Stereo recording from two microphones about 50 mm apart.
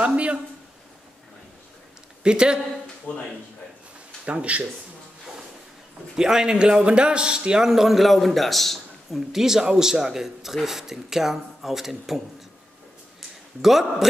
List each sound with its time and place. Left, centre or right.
0.0 s a sound: right
2.2 s speech: centre
3.1 s speech: left
4.3 s speech: right
6.1 s speech: centre
13.6 s a man's voice: centre